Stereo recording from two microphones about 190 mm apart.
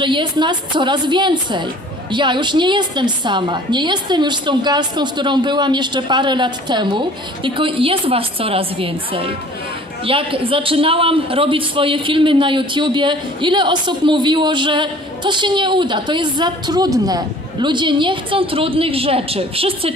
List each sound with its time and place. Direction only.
0.0 s a man's voice: 25° right (ahead or behind)